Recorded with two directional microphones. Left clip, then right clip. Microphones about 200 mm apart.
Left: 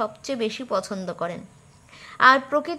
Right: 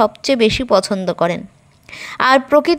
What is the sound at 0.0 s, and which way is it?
A woman's voice, 35° right (ahead or behind).